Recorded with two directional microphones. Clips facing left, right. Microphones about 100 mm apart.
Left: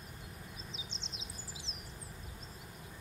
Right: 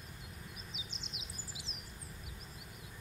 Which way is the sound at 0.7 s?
30° left (ahead or behind).